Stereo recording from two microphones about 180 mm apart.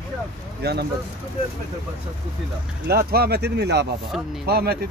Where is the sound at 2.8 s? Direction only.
60° right (ahead or behind).